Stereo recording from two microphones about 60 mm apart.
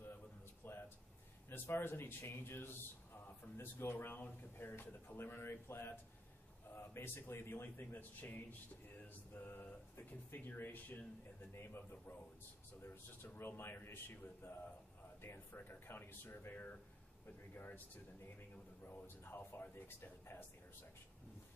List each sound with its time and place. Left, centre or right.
0.6 s a sound: left
1.5 s speech: left
3.8 s speech: left
11.5 s speech: left
13.4 s speech: left
15.2 s speech: left